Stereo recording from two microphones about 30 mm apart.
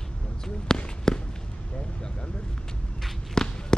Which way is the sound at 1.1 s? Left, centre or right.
Left.